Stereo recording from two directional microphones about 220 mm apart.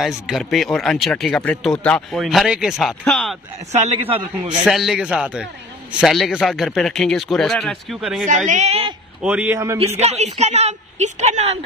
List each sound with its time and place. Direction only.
0.0 s a man's voice: centre (ahead or behind)
3.7 s a woman's voice: 25° right (ahead or behind)
4.6 s a man's voice: centre (ahead or behind)
8.5 s a woman's voice: 30° right (ahead or behind)
9.2 s a man's voice: 5° right (ahead or behind)
9.9 s a woman's voice: 30° right (ahead or behind)